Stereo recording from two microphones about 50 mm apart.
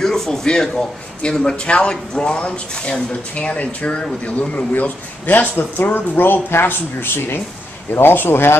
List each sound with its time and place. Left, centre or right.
0.0 s a man's voice: centre; by 8.5 s left